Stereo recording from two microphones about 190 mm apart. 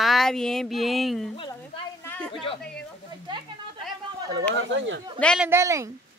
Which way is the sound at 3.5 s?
25° right (ahead or behind).